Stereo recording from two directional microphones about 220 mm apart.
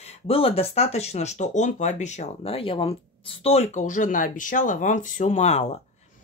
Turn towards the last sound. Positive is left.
turn(degrees=30)  # may be behind; listen again after turning